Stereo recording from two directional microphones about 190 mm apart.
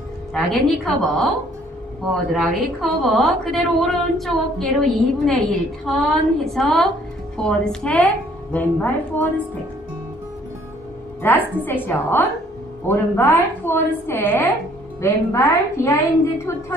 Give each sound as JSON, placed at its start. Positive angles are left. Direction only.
{"t": 0.3, "sound": "a woman's voice", "side_deg": 0}
{"t": 2.3, "sound": "a woman's voice", "side_deg": 0}
{"t": 11.2, "sound": "a woman's voice", "side_deg": 10}